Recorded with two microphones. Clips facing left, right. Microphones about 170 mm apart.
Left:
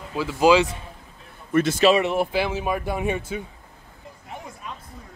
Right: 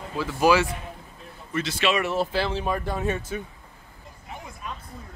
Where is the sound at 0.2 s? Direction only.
15° left (ahead or behind).